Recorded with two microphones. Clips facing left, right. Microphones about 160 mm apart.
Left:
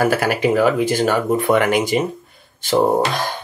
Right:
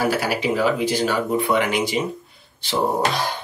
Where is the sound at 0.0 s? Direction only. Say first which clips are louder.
Left 4 dB; 50° left (ahead or behind).